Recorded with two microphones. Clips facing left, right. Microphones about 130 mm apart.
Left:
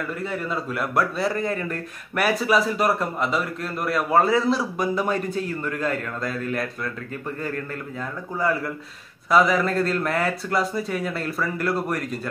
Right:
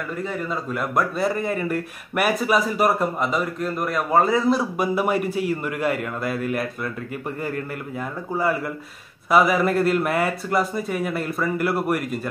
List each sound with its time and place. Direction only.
0.2 s speech: centre (ahead or behind)
8.4 s speech: 5° right (ahead or behind)